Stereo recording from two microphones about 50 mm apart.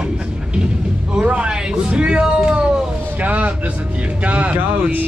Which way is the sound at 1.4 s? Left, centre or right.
Centre.